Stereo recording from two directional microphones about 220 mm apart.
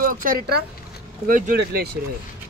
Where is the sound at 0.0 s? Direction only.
40° right (ahead or behind).